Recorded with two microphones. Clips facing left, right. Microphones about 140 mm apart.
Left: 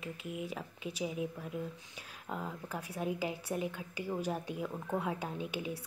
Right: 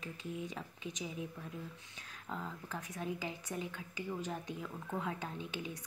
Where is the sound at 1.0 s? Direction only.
15° left (ahead or behind).